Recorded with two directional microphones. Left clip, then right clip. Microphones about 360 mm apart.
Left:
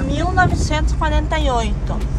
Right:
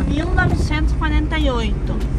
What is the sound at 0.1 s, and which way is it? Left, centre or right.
Speech, centre.